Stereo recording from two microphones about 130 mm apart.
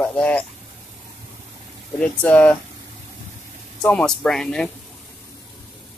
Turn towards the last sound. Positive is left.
turn(degrees=5)  # may be behind; listen again after turning